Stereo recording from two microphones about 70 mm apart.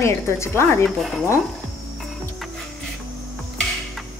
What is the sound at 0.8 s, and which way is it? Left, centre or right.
Speech, centre.